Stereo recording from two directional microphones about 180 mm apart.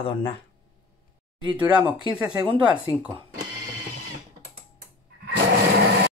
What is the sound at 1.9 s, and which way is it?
Speech, 25° right (ahead or behind).